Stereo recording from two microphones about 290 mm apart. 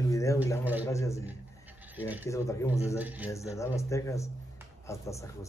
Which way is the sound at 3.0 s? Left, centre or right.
Centre.